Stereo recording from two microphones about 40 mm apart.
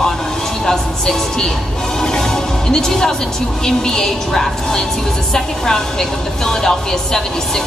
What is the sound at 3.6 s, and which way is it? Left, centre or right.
A woman's voice, centre.